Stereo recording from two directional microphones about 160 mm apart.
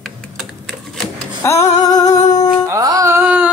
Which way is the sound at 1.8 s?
25° left (ahead or behind).